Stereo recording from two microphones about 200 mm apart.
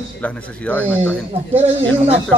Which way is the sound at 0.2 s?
5° left (ahead or behind).